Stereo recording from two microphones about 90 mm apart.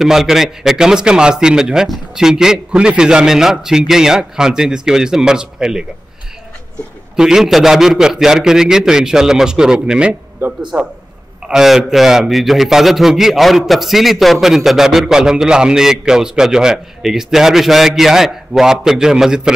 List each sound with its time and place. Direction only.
0.0 s a man's voice: 5° right (ahead or behind)
7.2 s a man's voice: 5° right (ahead or behind)
10.7 s a man's voice: 30° right (ahead or behind)
11.4 s a man's voice: 5° right (ahead or behind)